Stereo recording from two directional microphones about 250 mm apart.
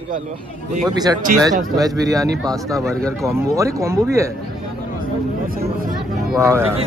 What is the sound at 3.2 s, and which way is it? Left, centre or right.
Speech, centre.